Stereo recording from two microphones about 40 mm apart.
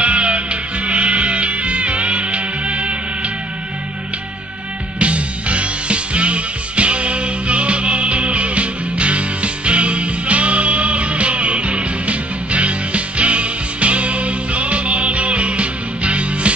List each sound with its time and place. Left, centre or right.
0.0 s music: right
4.9 s music: right